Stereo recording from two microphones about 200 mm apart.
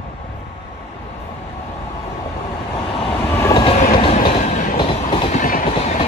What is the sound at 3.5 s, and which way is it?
Train, 30° left (ahead or behind).